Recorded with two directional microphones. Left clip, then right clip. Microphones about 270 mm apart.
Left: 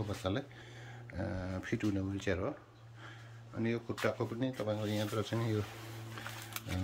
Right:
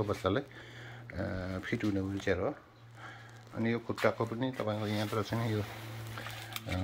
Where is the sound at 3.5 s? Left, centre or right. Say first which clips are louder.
Right 3 dB; centre.